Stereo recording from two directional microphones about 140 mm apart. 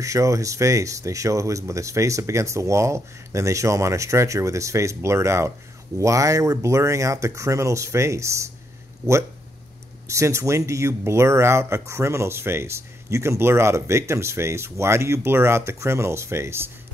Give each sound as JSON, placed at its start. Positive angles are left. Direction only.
{"t": 0.0, "sound": "speech", "side_deg": -20}
{"t": 10.0, "sound": "speech", "side_deg": -20}